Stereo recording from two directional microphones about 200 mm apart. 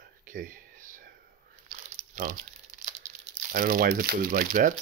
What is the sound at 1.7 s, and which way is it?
Crumpling, 45° right (ahead or behind).